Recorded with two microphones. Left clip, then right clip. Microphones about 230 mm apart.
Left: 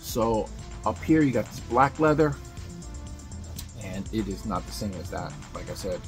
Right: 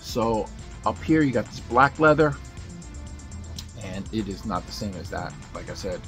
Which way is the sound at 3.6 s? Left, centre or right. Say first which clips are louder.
Right 2 dB; centre.